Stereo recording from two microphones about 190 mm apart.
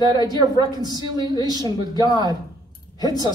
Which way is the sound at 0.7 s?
20° left (ahead or behind).